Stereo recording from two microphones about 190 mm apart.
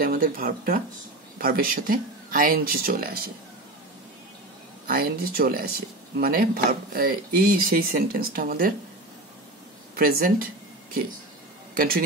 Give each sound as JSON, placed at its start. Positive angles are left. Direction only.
{"t": 0.0, "sound": "speech", "side_deg": -50}
{"t": 4.8, "sound": "speech", "side_deg": -50}
{"t": 9.9, "sound": "speech", "side_deg": -50}
{"t": 11.7, "sound": "speech", "side_deg": -50}